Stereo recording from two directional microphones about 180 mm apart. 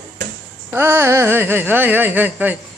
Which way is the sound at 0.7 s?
10° right (ahead or behind).